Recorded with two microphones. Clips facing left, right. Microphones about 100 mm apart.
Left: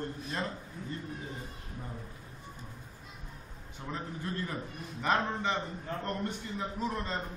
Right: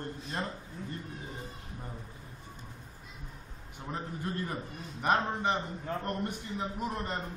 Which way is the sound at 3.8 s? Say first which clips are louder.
Right 1 dB; 20° right (ahead or behind).